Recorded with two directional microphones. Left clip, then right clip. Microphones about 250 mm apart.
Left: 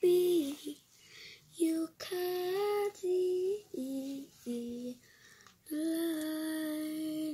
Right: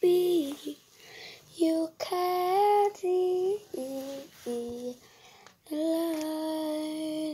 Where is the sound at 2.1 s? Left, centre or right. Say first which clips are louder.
Right 8 dB; right.